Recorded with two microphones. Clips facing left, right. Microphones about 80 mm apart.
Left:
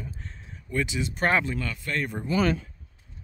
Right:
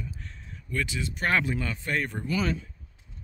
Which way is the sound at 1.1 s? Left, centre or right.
Left.